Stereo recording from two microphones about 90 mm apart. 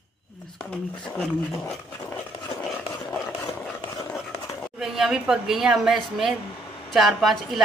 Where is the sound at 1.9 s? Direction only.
30° left (ahead or behind).